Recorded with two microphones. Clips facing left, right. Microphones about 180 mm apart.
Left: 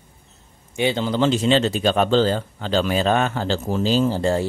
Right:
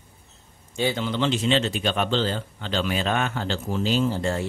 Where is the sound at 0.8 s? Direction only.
20° left (ahead or behind).